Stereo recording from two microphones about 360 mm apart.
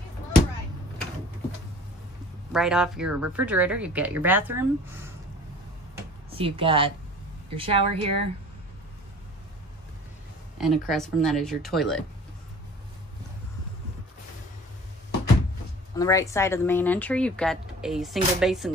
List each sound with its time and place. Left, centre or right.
2.5 s speech: centre
6.3 s speech: centre
10.6 s speech: centre
16.0 s speech: centre